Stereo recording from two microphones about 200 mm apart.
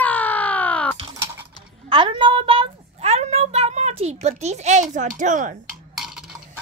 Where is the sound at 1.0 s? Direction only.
15° right (ahead or behind).